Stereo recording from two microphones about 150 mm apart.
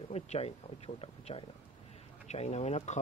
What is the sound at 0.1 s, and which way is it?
Speech, 45° left (ahead or behind).